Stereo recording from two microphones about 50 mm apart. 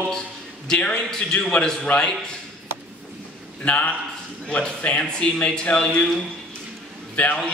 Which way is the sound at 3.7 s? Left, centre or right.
Left.